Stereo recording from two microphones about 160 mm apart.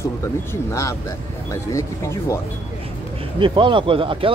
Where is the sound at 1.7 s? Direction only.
20° left (ahead or behind).